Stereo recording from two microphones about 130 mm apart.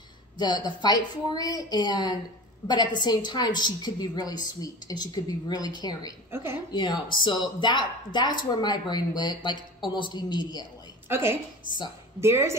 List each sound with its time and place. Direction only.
0.4 s a woman's voice: 35° left (ahead or behind)
6.3 s a woman's voice: 15° right (ahead or behind)
6.7 s a woman's voice: 35° left (ahead or behind)
11.1 s a woman's voice: 20° right (ahead or behind)